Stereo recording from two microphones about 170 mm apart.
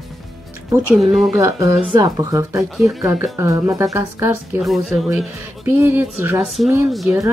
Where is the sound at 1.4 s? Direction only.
20° right (ahead or behind).